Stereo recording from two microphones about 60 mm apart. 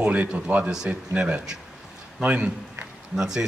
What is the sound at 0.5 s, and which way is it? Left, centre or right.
Speech, right.